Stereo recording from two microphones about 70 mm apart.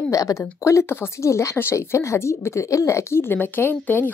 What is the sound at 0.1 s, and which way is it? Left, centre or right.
Speech, left.